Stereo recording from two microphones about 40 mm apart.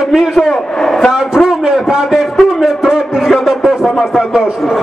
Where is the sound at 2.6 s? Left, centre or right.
Centre.